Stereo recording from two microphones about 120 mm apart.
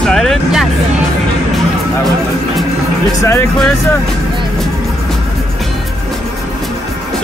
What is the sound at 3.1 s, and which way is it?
Speech, 25° left (ahead or behind).